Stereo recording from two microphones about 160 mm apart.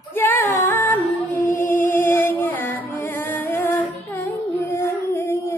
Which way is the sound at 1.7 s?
10° left (ahead or behind).